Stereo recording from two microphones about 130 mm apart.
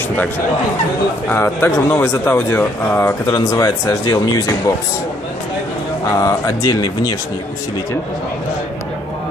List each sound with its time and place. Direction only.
1.3 s speech: 20° left (ahead or behind)
6.0 s speech: 25° left (ahead or behind)